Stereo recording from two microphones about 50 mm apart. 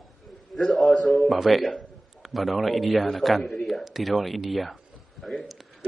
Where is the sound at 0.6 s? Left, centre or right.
Centre.